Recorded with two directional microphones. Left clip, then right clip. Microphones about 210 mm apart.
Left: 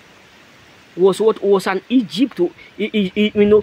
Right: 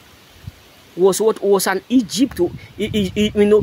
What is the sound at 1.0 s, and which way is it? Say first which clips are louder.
Speech: left 1 dB; 15° right (ahead or behind).